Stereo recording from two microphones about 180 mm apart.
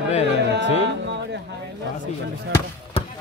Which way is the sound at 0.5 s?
80° right.